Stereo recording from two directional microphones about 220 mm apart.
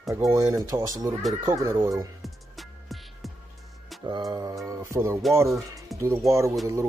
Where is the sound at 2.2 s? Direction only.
Centre (ahead or behind).